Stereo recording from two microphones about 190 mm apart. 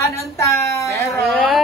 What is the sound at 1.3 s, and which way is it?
Speech, centre (ahead or behind).